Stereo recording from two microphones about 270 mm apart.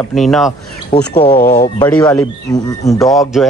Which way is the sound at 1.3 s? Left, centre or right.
Left.